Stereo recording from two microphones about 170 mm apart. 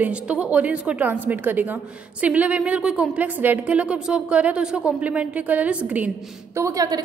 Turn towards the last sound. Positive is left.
turn(degrees=-20)  # may be behind; listen again after turning